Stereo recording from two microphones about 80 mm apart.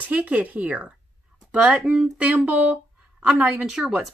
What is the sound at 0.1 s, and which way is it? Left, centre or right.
A woman's voice, centre.